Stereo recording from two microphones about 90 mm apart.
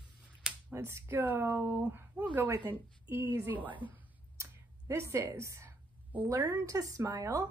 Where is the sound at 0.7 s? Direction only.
30° right (ahead or behind).